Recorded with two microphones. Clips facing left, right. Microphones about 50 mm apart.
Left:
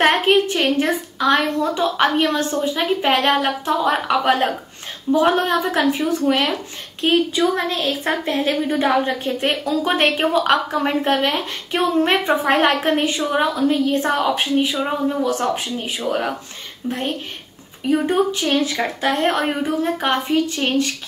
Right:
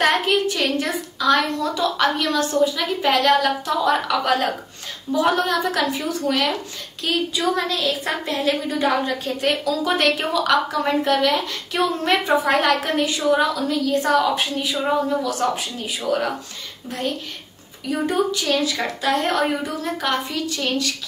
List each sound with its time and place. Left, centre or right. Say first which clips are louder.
0.0 s a woman's voice: left 3 dB; left
17.8 s a woman's voice: left 4 dB; left